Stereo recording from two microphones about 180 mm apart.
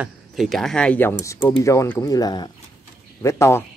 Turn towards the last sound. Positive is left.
turn(degrees=15)  # may be behind; listen again after turning